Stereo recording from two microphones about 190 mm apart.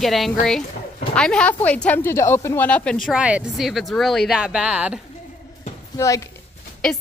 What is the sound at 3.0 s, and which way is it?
Speech, 5° right (ahead or behind).